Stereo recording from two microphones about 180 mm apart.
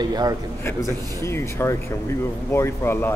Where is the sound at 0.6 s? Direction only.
15° left (ahead or behind).